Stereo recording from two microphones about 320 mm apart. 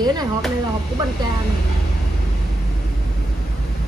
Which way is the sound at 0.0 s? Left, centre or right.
Centre.